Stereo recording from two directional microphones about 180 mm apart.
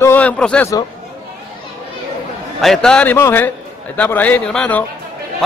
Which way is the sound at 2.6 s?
5° left (ahead or behind).